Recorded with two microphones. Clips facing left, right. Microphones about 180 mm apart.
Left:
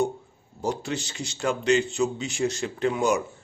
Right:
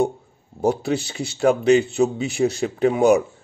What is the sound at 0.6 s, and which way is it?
Speech, 60° right (ahead or behind).